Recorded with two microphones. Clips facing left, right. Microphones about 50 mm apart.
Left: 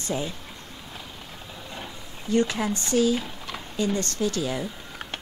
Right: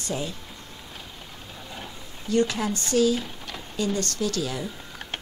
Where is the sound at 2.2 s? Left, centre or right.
Centre.